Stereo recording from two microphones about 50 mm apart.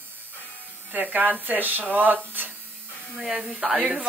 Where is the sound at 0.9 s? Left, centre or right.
Right.